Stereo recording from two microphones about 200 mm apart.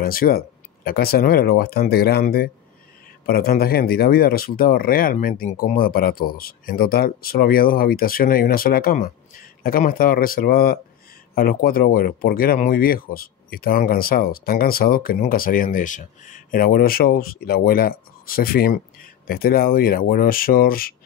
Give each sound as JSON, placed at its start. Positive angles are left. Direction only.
{"t": 0.0, "sound": "speech", "side_deg": 45}